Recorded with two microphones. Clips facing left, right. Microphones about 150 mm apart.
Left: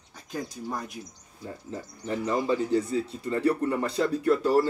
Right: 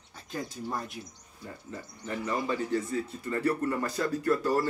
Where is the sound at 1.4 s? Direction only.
30° left (ahead or behind).